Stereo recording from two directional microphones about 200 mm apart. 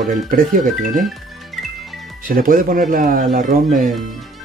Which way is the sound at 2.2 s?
45° right (ahead or behind).